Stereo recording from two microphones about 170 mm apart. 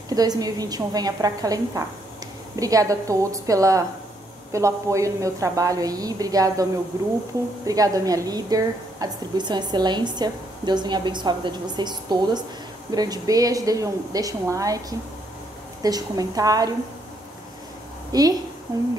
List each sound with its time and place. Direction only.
0.1 s a woman's voice: 20° right (ahead or behind)
18.1 s a woman's voice: 20° right (ahead or behind)